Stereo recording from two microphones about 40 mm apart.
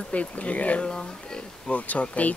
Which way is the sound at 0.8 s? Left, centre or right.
Centre.